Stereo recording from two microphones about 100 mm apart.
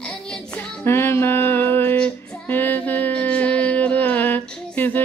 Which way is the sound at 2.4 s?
20° left (ahead or behind).